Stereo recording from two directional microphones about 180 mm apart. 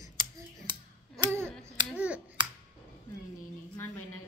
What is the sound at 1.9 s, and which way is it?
Speech, 5° right (ahead or behind).